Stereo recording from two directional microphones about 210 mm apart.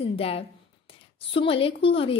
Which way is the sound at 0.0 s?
25° left (ahead or behind).